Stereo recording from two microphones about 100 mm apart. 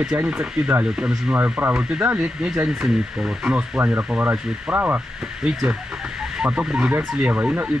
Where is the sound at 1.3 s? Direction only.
20° right (ahead or behind).